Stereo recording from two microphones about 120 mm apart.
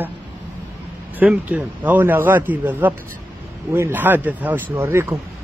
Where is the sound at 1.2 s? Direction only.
15° right (ahead or behind).